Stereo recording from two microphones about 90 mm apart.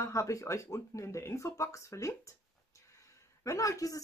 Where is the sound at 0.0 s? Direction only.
35° left (ahead or behind).